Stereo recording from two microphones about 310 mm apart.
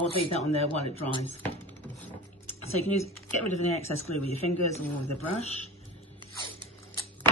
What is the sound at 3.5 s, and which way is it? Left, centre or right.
Speech, left.